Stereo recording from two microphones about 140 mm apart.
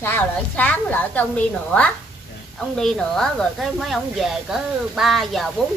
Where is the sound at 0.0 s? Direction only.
15° left (ahead or behind).